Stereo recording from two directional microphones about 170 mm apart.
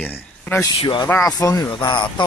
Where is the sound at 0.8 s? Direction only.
30° left (ahead or behind).